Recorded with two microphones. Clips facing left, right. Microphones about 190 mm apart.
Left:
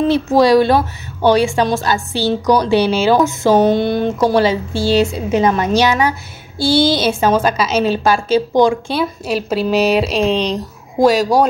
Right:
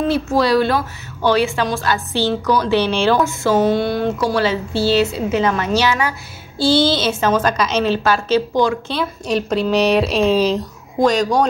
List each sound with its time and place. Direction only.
0.3 s a woman's voice: 15° left (ahead or behind)
2.1 s speech: 15° left (ahead or behind); by 10.6 s 5° right (ahead or behind)
11.0 s speech: 5° left (ahead or behind)